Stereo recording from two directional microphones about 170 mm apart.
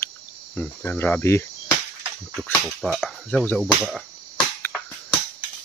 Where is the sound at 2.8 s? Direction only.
Centre (ahead or behind).